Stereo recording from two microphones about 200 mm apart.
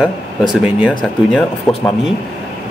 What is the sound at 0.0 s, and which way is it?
Speech, centre (ahead or behind).